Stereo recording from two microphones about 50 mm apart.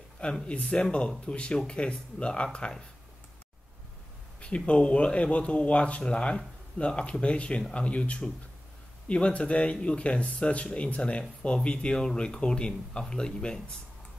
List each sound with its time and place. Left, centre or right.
0.2 s speech: left
0.6 s speech: centre
4.4 s speech: left